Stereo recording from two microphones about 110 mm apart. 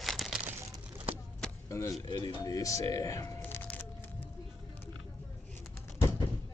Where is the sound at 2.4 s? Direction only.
30° left (ahead or behind).